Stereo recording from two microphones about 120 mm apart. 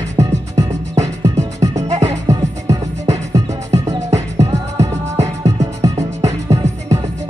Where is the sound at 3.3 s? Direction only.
30° right (ahead or behind).